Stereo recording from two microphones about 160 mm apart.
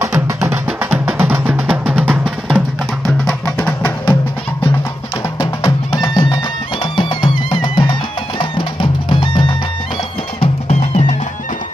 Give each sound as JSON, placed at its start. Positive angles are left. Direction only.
{"t": 0.0, "sound": "music", "side_deg": -15}
{"t": 3.6, "sound": "music", "side_deg": 10}
{"t": 5.4, "sound": "music", "side_deg": 20}
{"t": 10.4, "sound": "music", "side_deg": 45}